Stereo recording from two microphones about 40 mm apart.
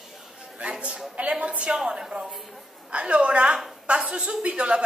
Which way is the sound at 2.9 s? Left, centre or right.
Right.